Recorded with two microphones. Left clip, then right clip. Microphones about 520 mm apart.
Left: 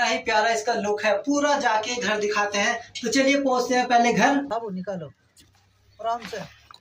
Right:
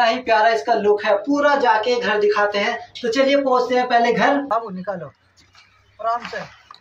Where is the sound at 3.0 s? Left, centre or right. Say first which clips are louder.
Right 5 dB; left.